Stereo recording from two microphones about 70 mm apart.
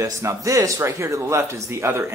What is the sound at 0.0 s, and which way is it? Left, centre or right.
Speech, right.